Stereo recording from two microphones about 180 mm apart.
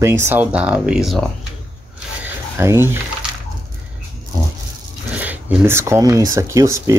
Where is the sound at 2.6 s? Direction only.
15° right (ahead or behind).